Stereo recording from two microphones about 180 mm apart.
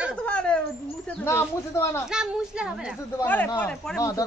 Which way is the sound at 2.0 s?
5° right (ahead or behind).